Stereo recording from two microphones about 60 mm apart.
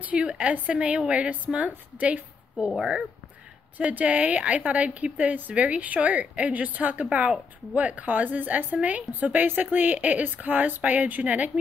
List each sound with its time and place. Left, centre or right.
0.0 s a woman's voice: right
3.7 s a woman's voice: right